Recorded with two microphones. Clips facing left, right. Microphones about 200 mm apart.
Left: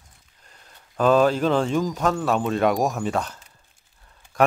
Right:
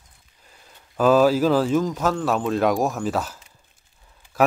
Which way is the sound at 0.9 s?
5° right (ahead or behind).